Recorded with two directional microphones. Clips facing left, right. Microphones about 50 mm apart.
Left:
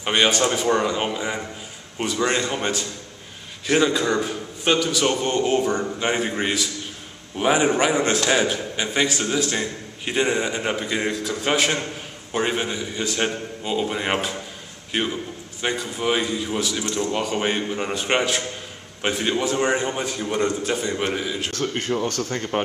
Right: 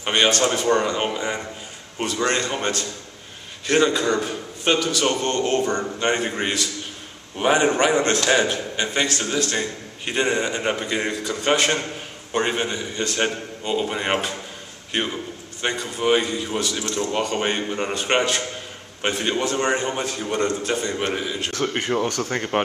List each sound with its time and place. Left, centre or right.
0.1 s a man's voice: centre
21.1 s a man's voice: centre
21.5 s speech: right